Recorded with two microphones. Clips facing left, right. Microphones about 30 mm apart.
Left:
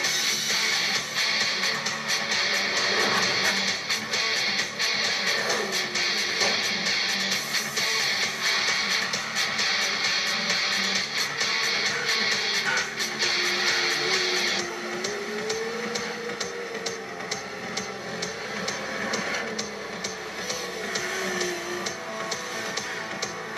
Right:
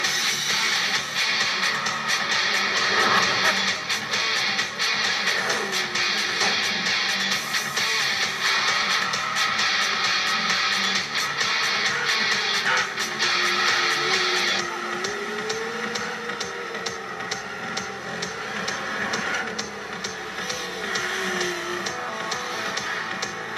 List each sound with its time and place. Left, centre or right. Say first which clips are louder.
0.0 s music: right 2 dB; centre